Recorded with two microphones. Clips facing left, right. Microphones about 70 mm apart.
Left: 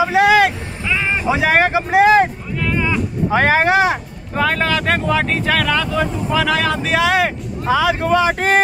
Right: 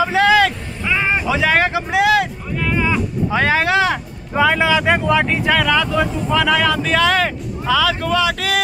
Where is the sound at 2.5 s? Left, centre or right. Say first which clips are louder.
Right 6 dB; centre.